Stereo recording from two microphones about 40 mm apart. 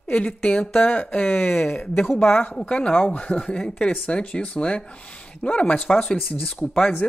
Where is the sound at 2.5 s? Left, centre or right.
Left.